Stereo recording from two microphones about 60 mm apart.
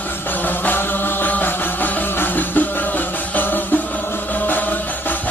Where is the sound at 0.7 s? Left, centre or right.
Left.